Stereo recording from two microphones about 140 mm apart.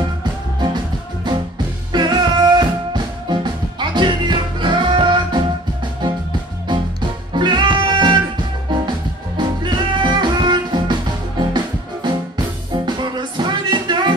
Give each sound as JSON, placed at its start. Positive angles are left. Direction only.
{"t": 1.3, "sound": "music", "side_deg": -35}
{"t": 6.7, "sound": "music", "side_deg": -35}
{"t": 9.4, "sound": "music", "side_deg": -35}